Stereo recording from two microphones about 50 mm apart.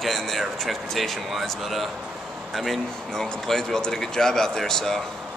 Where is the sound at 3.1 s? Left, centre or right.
Centre.